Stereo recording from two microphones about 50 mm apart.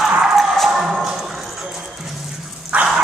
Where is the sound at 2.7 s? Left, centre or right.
Right.